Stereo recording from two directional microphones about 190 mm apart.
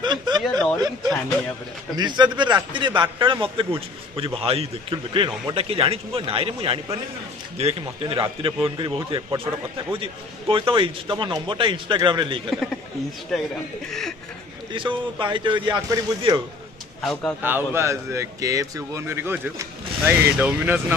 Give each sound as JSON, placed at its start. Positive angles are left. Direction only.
{"t": 0.0, "sound": "a sound", "side_deg": -25}
{"t": 0.4, "sound": "speech", "side_deg": 5}
{"t": 0.7, "sound": "speech", "side_deg": -20}
{"t": 10.5, "sound": "speech", "side_deg": -25}
{"t": 13.8, "sound": "chuckle", "side_deg": 0}
{"t": 14.7, "sound": "speech", "side_deg": -25}
{"t": 17.0, "sound": "speech", "side_deg": 0}
{"t": 17.4, "sound": "a man's voice", "side_deg": -10}